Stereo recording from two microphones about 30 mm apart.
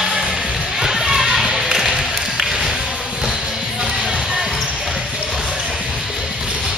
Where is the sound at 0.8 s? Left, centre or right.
Centre.